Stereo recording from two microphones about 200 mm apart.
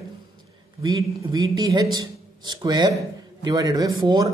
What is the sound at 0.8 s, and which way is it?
A man's voice, 20° right (ahead or behind).